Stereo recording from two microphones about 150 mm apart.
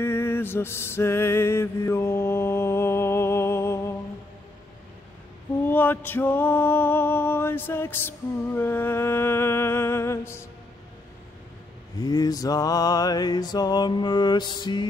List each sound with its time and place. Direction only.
0.0 s music: 15° left (ahead or behind)
5.7 s music: 10° left (ahead or behind)
12.0 s mantra: 25° left (ahead or behind)